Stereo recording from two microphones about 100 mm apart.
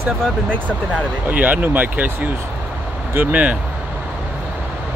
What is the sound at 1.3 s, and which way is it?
Speech, 15° right (ahead or behind).